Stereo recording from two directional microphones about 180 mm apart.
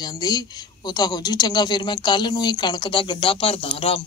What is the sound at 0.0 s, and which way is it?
Speech, 25° left (ahead or behind).